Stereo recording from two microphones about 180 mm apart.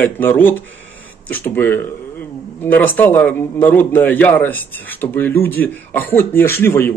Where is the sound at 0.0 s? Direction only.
10° left (ahead or behind).